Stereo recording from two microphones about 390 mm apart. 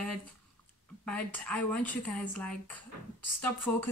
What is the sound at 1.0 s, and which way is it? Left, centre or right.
A woman's voice, centre.